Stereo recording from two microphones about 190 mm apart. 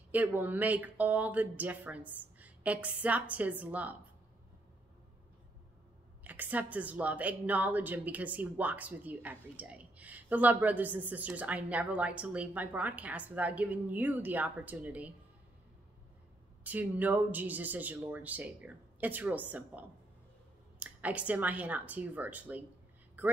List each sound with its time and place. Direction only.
0.1 s speech: 10° right (ahead or behind)
6.2 s speech: 10° right (ahead or behind)
16.6 s speech: 10° right (ahead or behind)
20.8 s speech: 5° right (ahead or behind)
23.2 s a sound: 10° right (ahead or behind)